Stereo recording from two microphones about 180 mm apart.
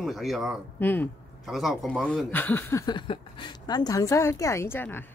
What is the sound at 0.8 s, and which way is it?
Speech, 10° left (ahead or behind).